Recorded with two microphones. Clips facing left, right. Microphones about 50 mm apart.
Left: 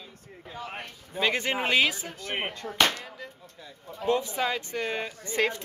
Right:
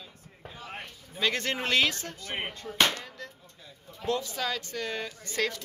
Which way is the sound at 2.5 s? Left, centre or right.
Left.